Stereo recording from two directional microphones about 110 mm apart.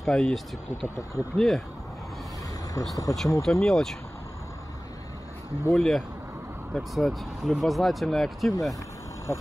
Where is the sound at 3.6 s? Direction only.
5° left (ahead or behind).